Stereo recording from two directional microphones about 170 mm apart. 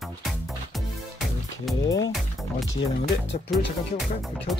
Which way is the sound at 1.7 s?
Centre (ahead or behind).